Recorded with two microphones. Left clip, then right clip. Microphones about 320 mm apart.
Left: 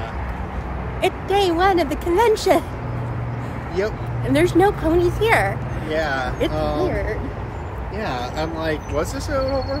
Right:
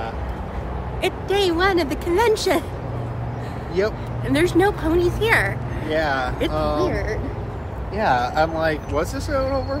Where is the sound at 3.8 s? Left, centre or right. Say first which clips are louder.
Right 1 dB; centre.